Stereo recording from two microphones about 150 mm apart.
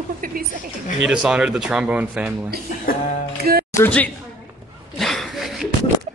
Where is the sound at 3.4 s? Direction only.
90° right.